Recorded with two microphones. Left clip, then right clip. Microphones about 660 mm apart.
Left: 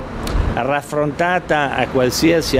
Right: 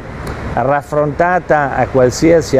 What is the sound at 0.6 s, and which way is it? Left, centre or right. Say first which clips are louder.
Speech: right 5 dB; right.